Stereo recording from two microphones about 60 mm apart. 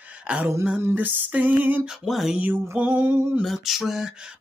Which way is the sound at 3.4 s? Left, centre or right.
Centre.